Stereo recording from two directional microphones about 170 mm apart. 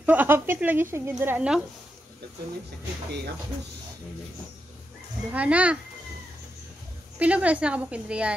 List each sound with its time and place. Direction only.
0.0 s speech: 10° right (ahead or behind)
5.3 s speech: 10° right (ahead or behind)
7.2 s speech: 10° right (ahead or behind)